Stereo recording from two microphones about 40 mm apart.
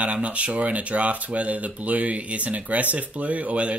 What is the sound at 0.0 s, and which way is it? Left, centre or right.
Speech, right.